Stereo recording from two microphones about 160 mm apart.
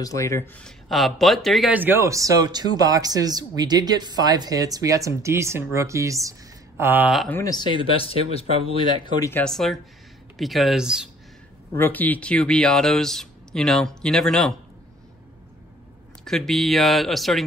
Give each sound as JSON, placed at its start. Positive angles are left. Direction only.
{"t": 0.0, "sound": "speech", "side_deg": 20}
{"t": 0.6, "sound": "speech", "side_deg": 0}
{"t": 7.2, "sound": "speech", "side_deg": 10}
{"t": 7.4, "sound": "speech", "side_deg": 25}
{"t": 9.3, "sound": "speech", "side_deg": 5}
{"t": 11.7, "sound": "speech", "side_deg": 10}
{"t": 16.3, "sound": "speech", "side_deg": 0}